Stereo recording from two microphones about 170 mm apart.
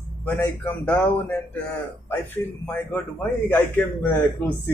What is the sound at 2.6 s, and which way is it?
A man's voice, 10° left (ahead or behind).